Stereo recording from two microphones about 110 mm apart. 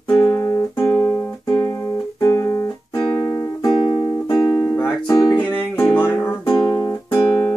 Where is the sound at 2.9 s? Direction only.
45° left (ahead or behind).